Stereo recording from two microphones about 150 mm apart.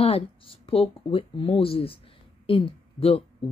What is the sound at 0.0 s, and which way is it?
Speech, 40° left (ahead or behind).